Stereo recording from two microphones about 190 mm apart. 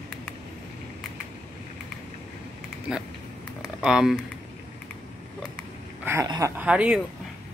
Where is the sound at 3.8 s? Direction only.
5° right (ahead or behind).